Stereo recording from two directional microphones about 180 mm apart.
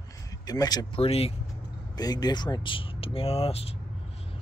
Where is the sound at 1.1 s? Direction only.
35° left (ahead or behind).